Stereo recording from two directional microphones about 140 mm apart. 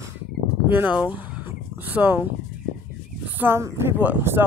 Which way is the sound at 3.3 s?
15° right (ahead or behind).